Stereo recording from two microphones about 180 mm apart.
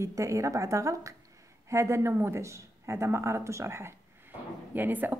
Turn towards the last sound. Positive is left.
turn(degrees=-10)  # may be behind; listen again after turning